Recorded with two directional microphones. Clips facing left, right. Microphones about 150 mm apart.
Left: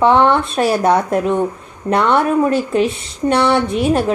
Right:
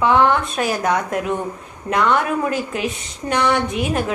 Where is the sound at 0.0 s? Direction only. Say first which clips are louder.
Left 4 dB; 30° left (ahead or behind).